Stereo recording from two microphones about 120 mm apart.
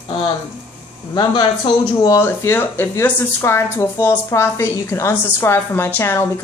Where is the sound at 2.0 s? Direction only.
25° left (ahead or behind).